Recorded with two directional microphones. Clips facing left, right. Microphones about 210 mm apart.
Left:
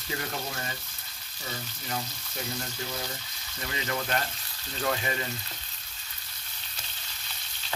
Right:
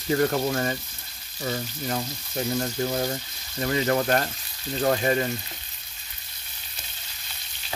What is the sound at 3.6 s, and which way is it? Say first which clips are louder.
Speech: right 10 dB; 45° right (ahead or behind).